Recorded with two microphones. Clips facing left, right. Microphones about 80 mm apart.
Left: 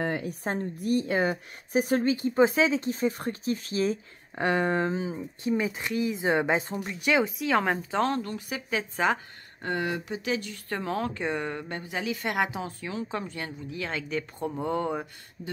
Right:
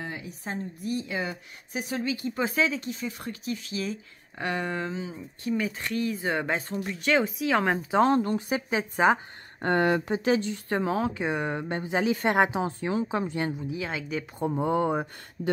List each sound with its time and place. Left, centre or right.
0.0 s a woman's voice: left
2.8 s speech: left; by 6.9 s centre
6.9 s speech: centre
7.9 s a woman's voice: right
9.6 s speech: right
10.5 s a woman's voice: centre